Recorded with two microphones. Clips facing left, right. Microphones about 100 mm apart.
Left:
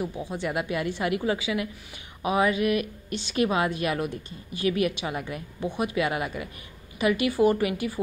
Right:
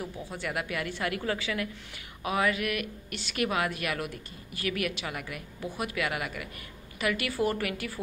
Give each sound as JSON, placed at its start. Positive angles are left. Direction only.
{"t": 0.0, "sound": "a woman's voice", "side_deg": 20}